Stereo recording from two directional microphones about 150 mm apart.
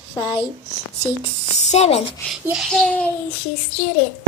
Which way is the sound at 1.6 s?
50° left (ahead or behind).